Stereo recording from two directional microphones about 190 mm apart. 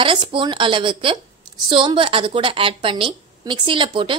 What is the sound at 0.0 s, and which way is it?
A woman's voice, 25° right (ahead or behind).